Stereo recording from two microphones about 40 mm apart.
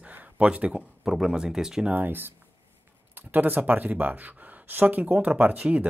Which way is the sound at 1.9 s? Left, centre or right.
Right.